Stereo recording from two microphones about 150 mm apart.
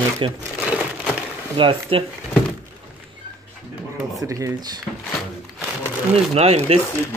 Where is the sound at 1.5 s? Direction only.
35° right (ahead or behind).